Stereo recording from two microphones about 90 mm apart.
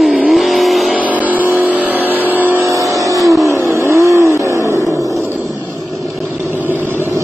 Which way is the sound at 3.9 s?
30° right (ahead or behind).